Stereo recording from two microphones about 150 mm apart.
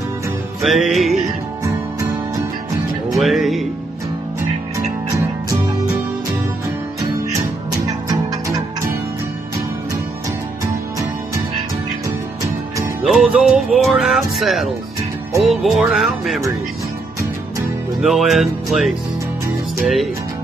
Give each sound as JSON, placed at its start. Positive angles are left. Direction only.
{"t": 0.6, "sound": "music", "side_deg": 0}
{"t": 1.6, "sound": "music", "side_deg": -20}
{"t": 3.2, "sound": "music", "side_deg": 0}
{"t": 13.0, "sound": "music", "side_deg": 0}
{"t": 18.0, "sound": "music", "side_deg": 0}